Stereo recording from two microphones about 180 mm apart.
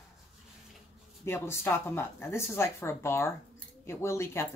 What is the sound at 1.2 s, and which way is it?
Speech, 15° left (ahead or behind).